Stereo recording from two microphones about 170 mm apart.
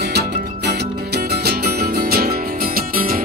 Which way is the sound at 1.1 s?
70° right (ahead or behind).